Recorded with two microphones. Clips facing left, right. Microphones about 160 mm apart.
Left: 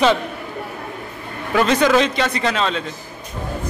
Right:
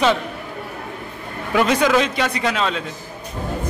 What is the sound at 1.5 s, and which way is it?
A man's voice, 10° right (ahead or behind).